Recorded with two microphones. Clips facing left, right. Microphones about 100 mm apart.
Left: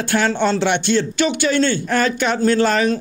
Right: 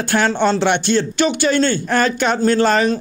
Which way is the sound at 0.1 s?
40° right (ahead or behind).